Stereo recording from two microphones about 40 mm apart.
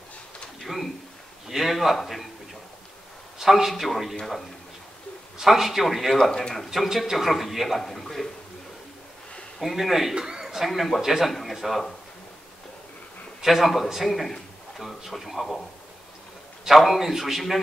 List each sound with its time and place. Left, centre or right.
1.5 s a man's voice: centre
3.3 s a man's voice: centre
5.4 s a man's voice: centre
9.6 s a man's voice: centre
10.1 s a man's voice: centre
10.4 s a man's voice: centre
13.4 s a man's voice: centre
14.0 s a man's voice: centre
16.6 s a man's voice: centre